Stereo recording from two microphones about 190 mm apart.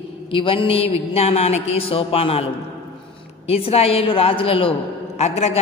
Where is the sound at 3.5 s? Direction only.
30° left (ahead or behind).